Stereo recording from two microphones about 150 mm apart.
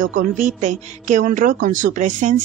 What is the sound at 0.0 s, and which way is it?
Speech, 60° right (ahead or behind).